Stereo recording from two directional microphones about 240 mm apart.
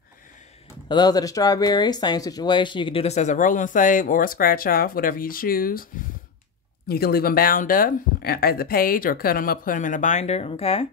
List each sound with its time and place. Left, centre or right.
0.8 s speech: centre; by 5.9 s left
6.9 s speech: left